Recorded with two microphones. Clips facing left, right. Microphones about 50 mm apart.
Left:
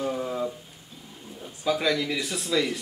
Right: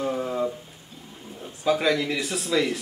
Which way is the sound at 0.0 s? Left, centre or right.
Centre.